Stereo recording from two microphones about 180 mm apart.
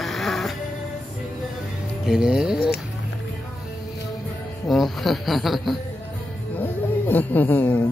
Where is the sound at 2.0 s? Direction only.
5° right (ahead or behind).